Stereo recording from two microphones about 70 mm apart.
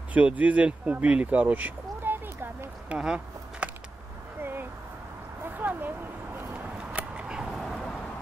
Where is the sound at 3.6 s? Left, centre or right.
Centre.